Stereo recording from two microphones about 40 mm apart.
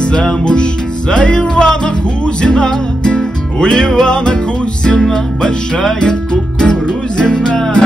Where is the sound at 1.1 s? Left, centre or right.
Left.